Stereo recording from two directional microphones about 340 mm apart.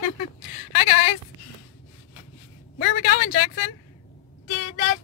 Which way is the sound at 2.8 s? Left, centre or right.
Left.